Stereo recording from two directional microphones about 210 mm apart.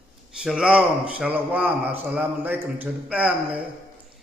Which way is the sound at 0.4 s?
5° right (ahead or behind).